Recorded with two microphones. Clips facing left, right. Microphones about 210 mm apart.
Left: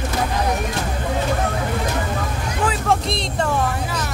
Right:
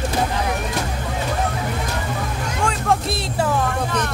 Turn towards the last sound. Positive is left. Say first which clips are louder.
# even
turn(degrees=-5)  # may be behind; listen again after turning